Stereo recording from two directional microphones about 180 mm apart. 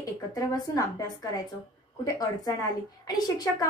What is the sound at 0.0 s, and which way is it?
A woman's voice, 20° left (ahead or behind).